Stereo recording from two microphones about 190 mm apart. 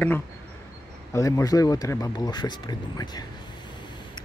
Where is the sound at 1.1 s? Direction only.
15° left (ahead or behind).